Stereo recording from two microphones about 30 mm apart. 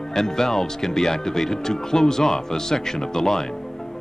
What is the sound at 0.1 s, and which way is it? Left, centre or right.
Speech, centre.